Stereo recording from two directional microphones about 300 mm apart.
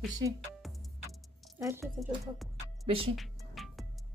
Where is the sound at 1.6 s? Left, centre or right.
Centre.